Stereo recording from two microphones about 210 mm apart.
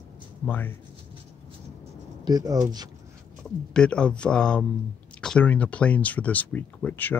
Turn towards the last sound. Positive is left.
turn(degrees=10)  # may be behind; listen again after turning